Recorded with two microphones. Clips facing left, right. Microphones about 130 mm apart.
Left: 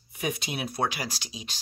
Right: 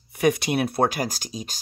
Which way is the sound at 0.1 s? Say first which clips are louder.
Right 11 dB; 70° right (ahead or behind).